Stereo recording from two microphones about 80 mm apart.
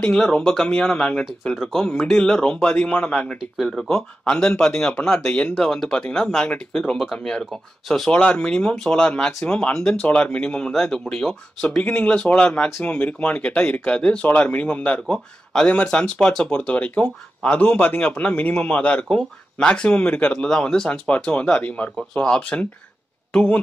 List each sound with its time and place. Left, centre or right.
0.0 s speech: centre